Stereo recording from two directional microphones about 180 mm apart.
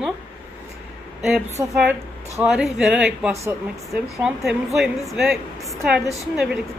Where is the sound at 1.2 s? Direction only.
Centre (ahead or behind).